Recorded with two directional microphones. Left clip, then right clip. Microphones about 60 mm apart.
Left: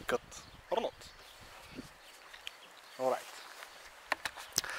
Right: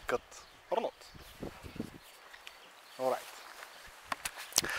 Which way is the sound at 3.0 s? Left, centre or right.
Right.